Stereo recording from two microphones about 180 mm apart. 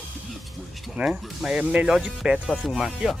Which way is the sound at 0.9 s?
5° right (ahead or behind).